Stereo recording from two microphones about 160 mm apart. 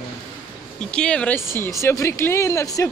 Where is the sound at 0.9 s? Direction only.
5° left (ahead or behind).